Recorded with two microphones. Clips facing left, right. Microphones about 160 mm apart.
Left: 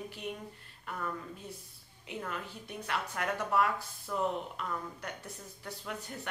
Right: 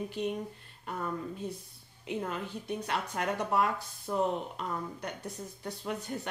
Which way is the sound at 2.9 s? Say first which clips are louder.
Even; 25° right (ahead or behind).